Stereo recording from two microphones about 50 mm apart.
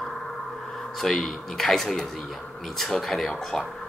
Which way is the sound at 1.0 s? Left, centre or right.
Centre.